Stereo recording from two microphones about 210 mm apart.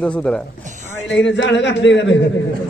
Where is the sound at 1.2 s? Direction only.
60° left (ahead or behind).